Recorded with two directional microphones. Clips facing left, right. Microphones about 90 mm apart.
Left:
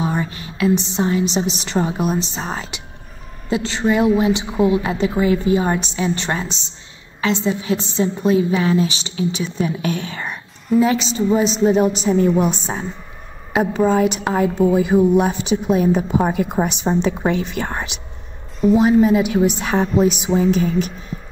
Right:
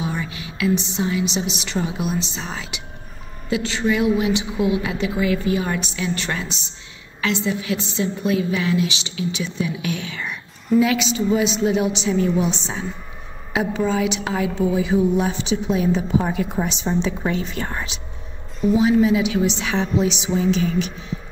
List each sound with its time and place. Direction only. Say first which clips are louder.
0.0 s a woman's voice: left 5 dB; 40° left (ahead or behind)